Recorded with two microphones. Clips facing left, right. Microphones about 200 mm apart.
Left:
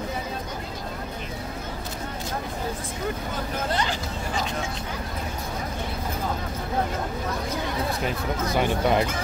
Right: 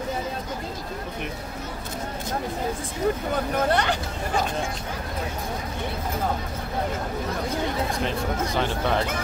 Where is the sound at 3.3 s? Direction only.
65° right (ahead or behind).